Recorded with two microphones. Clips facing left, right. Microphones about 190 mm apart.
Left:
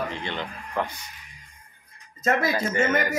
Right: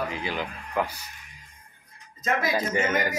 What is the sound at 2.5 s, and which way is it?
Speech, 15° right (ahead or behind).